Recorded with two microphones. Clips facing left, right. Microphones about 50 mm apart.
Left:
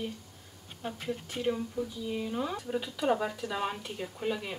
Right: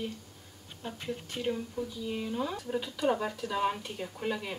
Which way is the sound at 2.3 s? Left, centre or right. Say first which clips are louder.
Even; centre.